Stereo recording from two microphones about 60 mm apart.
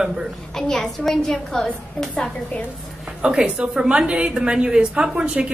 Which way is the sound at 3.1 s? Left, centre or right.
Centre.